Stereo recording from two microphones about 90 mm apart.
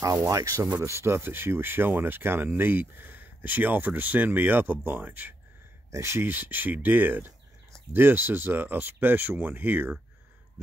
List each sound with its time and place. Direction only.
0.0 s speech: 40° right (ahead or behind); by 5.3 s 20° right (ahead or behind)
5.9 s speech: 30° right (ahead or behind)